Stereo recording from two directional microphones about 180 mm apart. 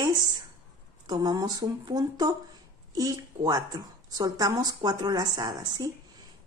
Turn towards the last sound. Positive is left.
turn(degrees=-20)  # may be behind; listen again after turning